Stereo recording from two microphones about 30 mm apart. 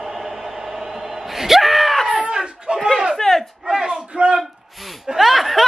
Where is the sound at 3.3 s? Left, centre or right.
Left.